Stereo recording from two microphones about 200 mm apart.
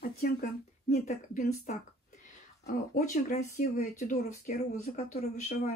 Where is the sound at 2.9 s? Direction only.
40° left (ahead or behind).